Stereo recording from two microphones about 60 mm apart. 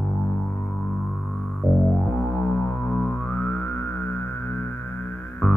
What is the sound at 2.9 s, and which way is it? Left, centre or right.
Music, centre.